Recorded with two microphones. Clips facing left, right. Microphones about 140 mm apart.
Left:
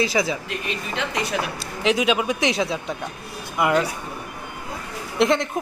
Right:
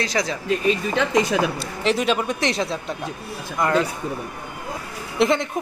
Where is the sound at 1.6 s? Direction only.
Centre (ahead or behind).